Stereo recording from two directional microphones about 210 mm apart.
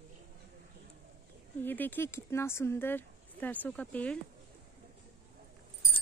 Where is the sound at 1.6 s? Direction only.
10° left (ahead or behind).